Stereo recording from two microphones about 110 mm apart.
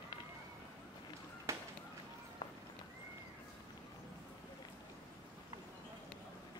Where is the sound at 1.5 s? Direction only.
25° right (ahead or behind).